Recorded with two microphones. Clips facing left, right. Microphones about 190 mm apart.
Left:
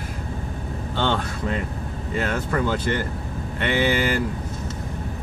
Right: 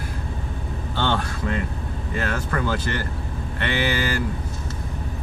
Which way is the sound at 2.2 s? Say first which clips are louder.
Left 2 dB; 15° left (ahead or behind).